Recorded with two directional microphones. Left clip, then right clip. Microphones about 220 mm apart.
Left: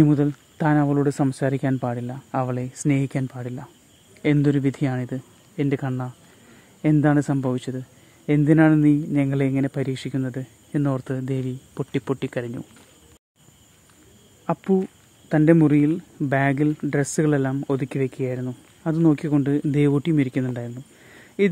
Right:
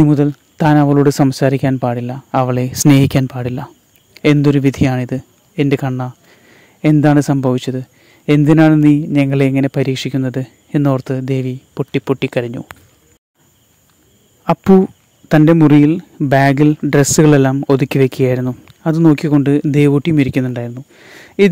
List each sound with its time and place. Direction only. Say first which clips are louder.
0.0 s speech: right 7 dB; 30° right (ahead or behind)
14.4 s speech: right 11 dB; 45° right (ahead or behind)